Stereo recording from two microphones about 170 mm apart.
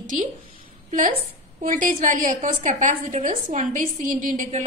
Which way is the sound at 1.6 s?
50° right (ahead or behind).